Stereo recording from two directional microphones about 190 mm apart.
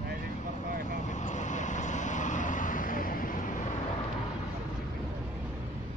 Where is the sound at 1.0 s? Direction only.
40° left (ahead or behind).